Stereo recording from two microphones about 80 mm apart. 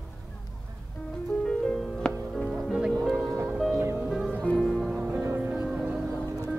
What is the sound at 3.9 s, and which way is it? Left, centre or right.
Music, centre.